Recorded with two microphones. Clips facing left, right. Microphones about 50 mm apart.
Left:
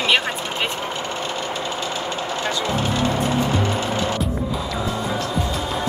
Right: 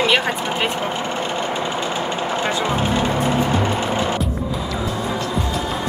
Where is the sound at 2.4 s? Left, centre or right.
Right.